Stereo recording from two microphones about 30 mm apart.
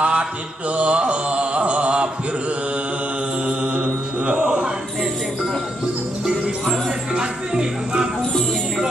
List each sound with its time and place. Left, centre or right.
0.0 s mantra: right
3.4 s mantra: right
7.2 s music: right